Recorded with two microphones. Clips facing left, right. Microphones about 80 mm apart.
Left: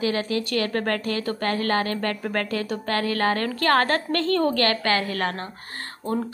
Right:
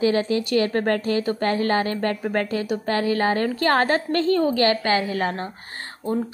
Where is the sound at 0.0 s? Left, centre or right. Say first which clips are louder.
Right 4 dB; right.